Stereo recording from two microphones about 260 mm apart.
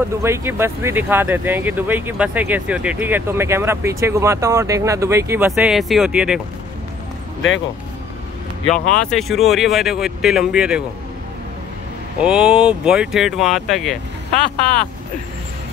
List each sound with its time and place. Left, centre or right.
0.2 s speech: centre
8.6 s speech: centre
12.2 s speech: centre